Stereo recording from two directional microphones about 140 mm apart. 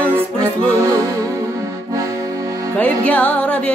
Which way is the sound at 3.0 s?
10° left (ahead or behind).